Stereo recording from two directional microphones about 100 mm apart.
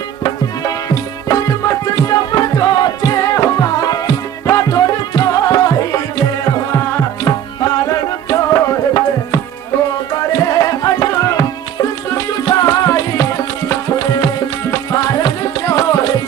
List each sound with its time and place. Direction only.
0.2 s music: 40° left (ahead or behind)
7.2 s tabla: 35° left (ahead or behind)
10.1 s music: 35° left (ahead or behind)